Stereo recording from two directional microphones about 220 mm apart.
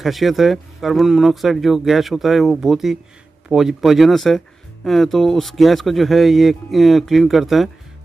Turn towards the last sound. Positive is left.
turn(degrees=0)  # may be behind; listen again after turning